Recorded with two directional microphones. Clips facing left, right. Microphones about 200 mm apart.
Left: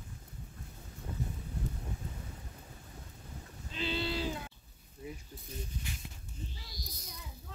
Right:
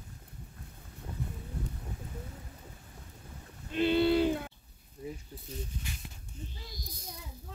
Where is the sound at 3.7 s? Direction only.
55° right (ahead or behind).